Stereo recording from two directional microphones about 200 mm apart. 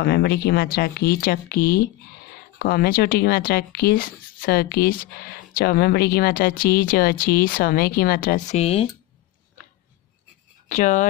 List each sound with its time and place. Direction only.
0.0 s speech: 55° left (ahead or behind)
8.5 s speech: 30° left (ahead or behind)
10.7 s speech: 40° left (ahead or behind)